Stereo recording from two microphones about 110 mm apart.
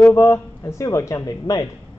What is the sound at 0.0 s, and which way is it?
Speech, 25° left (ahead or behind).